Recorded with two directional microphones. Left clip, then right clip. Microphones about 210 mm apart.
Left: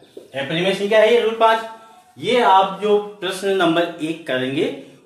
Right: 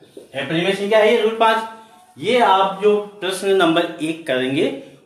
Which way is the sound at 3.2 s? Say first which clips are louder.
Right 2 dB; 20° right (ahead or behind).